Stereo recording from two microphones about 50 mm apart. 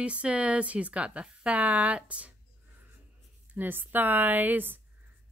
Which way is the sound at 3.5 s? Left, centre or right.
Right.